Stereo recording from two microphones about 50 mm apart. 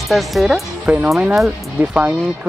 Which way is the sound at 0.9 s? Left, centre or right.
Centre.